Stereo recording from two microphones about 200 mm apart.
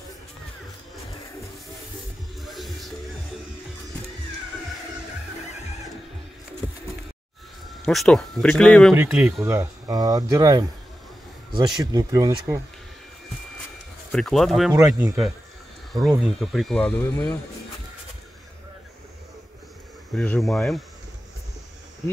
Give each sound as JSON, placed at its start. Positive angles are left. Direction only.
{"t": 2.4, "sound": "music", "side_deg": 0}
{"t": 7.8, "sound": "speech", "side_deg": 0}
{"t": 8.9, "sound": "speech", "side_deg": -10}
{"t": 14.1, "sound": "speech", "side_deg": 0}
{"t": 14.7, "sound": "speech", "side_deg": -15}
{"t": 16.2, "sound": "speech", "side_deg": 0}
{"t": 20.1, "sound": "speech", "side_deg": 5}